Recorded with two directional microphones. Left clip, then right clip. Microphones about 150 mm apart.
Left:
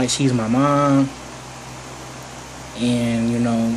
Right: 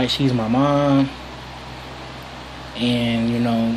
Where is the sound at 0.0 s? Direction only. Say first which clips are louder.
Even; 15° left (ahead or behind).